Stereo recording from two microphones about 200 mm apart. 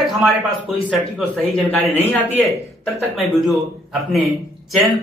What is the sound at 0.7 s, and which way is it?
A man's voice, centre (ahead or behind).